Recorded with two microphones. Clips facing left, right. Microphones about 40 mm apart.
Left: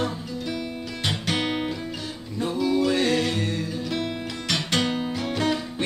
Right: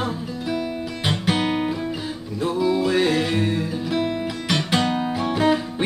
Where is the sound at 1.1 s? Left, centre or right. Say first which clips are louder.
Right 4 dB; centre.